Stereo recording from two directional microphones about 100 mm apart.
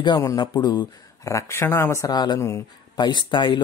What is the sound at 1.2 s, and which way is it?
Speech, 30° left (ahead or behind).